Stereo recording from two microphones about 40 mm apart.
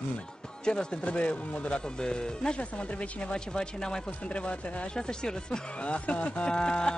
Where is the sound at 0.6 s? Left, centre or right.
Left.